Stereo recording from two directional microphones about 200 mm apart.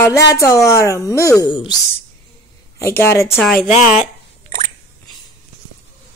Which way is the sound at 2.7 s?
10° left (ahead or behind).